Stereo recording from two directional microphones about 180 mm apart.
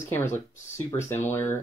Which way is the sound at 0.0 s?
15° left (ahead or behind).